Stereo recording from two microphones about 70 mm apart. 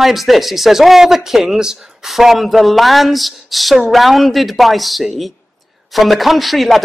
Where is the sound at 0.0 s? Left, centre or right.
Centre.